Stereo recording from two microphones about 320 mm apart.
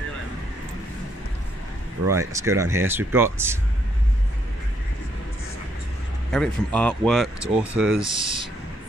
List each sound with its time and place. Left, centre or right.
2.0 s speech: centre
6.3 s speech: centre
8.0 s speech: centre